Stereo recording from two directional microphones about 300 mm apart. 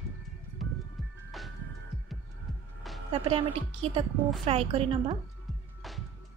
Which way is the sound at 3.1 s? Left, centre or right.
Centre.